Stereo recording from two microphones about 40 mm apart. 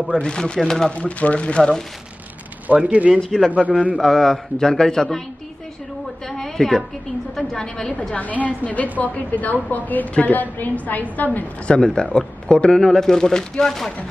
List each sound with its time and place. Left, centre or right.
0.2 s speech: left
0.6 s speech: centre
0.9 s speech: left
2.7 s speech: right
3.3 s a man's voice: centre
6.2 s a sound: centre
7.3 s speech: centre
8.2 s a woman's voice: left
11.6 s speech: left
12.7 s speech: centre